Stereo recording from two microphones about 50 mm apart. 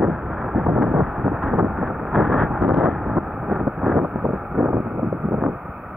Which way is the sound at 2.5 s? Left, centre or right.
Centre.